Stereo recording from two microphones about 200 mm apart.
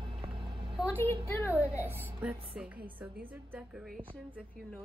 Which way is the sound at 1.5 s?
10° right (ahead or behind).